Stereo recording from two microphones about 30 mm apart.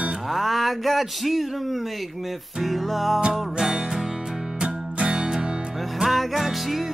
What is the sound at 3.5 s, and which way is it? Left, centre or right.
Music, centre.